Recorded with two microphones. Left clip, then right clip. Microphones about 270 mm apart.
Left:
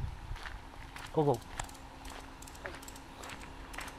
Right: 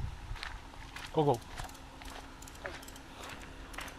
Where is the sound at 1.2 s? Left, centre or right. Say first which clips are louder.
Right 1 dB; right.